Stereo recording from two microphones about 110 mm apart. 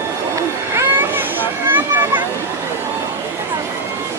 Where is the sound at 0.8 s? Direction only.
20° right (ahead or behind).